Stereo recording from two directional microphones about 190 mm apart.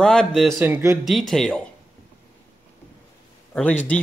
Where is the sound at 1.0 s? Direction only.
Centre (ahead or behind).